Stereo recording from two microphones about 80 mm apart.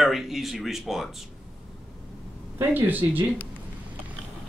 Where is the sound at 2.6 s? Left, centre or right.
Right.